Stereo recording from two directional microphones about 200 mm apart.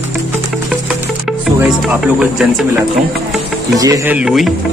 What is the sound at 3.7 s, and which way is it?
Speech, 15° right (ahead or behind).